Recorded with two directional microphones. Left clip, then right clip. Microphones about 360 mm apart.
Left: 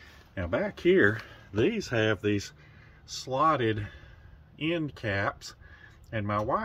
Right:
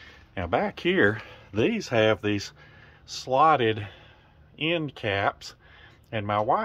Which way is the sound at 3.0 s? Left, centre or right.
Centre.